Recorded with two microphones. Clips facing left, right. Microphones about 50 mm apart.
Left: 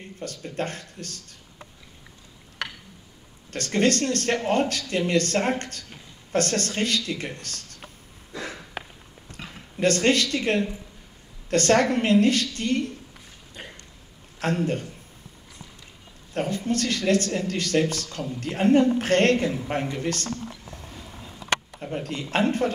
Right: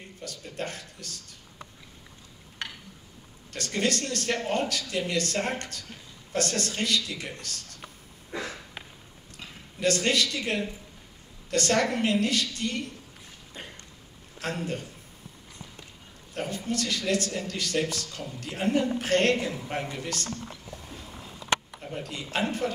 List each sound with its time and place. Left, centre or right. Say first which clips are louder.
0.2 s a woman's voice: left 5 dB; left
3.5 s a woman's voice: left 6 dB; left
8.3 s sniff: even; right
8.8 s a sound: left 7 dB; left
9.8 s speech: left 4 dB; left
14.4 s speech: left 7 dB; left
16.3 s a woman's voice: left 5 dB; left
21.9 s speech: left 5 dB; left